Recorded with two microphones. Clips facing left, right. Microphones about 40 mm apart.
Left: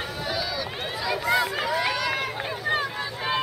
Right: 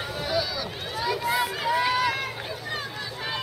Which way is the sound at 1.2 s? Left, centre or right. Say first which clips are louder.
Left 5 dB; centre.